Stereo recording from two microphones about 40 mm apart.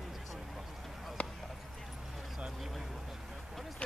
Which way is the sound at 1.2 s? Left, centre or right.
Left.